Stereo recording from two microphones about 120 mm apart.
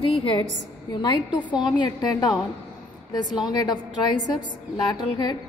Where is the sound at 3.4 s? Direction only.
35° left (ahead or behind).